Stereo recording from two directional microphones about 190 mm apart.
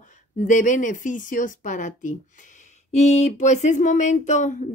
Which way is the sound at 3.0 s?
35° left (ahead or behind).